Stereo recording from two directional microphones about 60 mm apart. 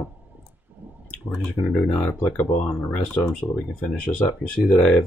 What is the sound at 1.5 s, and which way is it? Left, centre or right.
Speech, left.